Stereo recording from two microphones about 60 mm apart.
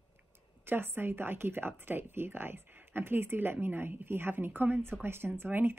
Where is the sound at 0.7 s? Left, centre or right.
Right.